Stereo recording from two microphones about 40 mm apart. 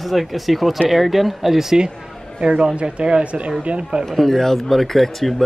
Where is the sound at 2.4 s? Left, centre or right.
Right.